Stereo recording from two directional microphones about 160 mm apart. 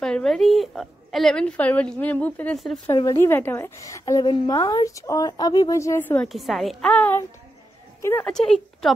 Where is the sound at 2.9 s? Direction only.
20° left (ahead or behind).